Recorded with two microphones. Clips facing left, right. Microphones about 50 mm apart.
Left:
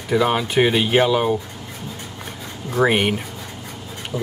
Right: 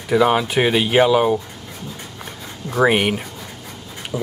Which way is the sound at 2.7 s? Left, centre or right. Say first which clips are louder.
Right 1 dB; centre.